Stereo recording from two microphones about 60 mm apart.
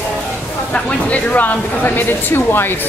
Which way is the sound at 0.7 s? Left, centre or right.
Left.